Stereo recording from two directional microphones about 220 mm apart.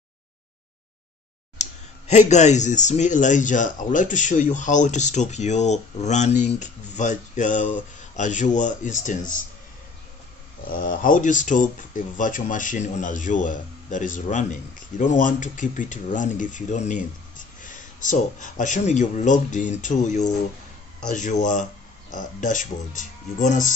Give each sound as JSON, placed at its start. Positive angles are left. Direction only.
{"t": 1.6, "sound": "speech", "side_deg": 30}
{"t": 10.7, "sound": "speech", "side_deg": 40}